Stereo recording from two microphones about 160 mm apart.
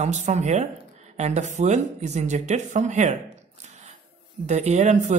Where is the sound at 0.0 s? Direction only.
45° right (ahead or behind).